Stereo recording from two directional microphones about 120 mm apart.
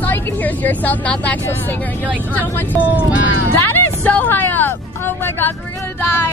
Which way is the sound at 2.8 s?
15° right (ahead or behind).